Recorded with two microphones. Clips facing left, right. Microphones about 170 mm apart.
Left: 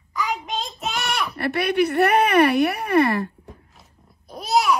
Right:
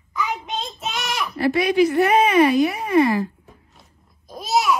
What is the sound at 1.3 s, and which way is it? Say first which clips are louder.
Speech: right 4 dB; 65° left (ahead or behind).